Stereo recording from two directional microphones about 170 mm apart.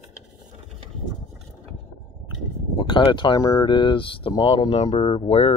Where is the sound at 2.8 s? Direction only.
25° left (ahead or behind).